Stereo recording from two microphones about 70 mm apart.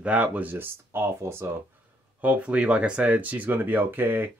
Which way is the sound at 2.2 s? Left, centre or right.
Centre.